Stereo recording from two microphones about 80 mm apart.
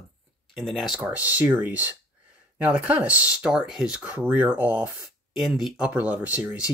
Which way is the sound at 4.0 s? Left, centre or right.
Right.